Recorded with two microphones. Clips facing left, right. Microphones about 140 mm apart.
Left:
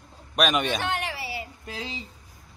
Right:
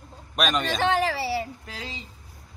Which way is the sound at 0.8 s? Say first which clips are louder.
Right 7 dB; 90° right.